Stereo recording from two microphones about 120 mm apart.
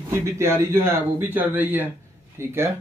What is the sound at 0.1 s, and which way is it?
Speech, 20° right (ahead or behind).